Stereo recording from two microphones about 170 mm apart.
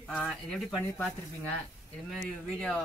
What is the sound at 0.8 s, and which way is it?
Speech, 15° left (ahead or behind).